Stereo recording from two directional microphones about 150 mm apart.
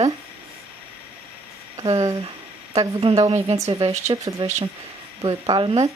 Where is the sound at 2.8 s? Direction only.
40° right (ahead or behind).